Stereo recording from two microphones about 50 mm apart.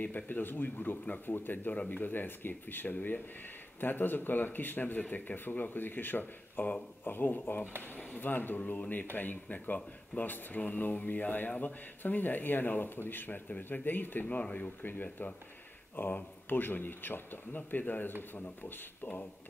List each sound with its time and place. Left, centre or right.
0.0 s speech: left
14.2 s speech: left